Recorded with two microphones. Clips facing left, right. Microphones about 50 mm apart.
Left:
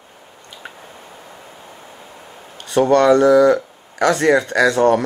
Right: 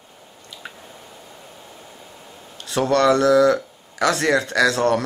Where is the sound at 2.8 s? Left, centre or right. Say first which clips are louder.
Left 4 dB; centre.